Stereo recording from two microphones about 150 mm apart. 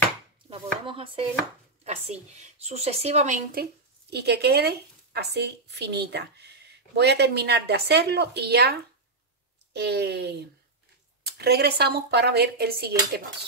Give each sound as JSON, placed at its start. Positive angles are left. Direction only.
{"t": 0.5, "sound": "chopping", "side_deg": -35}
{"t": 1.9, "sound": "a woman's voice", "side_deg": -45}
{"t": 3.6, "sound": "speech", "side_deg": -90}